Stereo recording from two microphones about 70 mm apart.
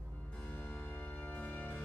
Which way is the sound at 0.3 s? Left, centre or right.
Centre.